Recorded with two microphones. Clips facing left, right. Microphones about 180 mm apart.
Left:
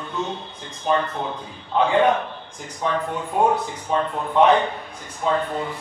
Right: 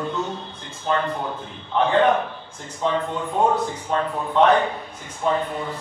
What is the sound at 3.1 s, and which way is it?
Speech, 10° left (ahead or behind).